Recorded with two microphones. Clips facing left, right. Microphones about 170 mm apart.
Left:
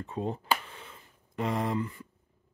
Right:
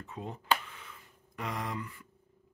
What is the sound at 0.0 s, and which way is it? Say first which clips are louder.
Speech: left 8 dB; 30° left (ahead or behind).